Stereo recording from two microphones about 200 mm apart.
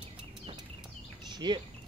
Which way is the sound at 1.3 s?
20° right (ahead or behind).